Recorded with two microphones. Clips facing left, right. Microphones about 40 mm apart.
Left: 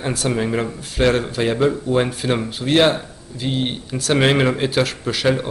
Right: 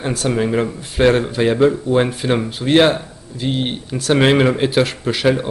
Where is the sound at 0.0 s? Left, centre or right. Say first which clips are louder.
Right 2 dB; centre.